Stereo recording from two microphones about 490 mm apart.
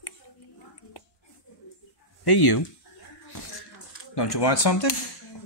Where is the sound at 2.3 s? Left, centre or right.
Left.